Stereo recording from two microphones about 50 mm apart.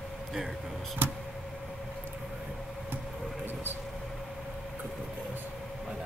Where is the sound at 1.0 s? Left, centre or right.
Right.